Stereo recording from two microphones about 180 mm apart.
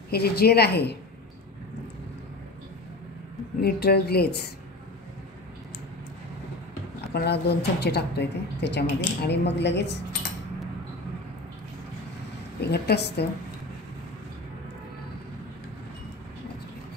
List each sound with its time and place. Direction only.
0.1 s a woman's voice: 60° left (ahead or behind)
3.6 s a woman's voice: 60° left (ahead or behind)
7.2 s speech: 65° left (ahead or behind)
12.5 s a woman's voice: 65° left (ahead or behind)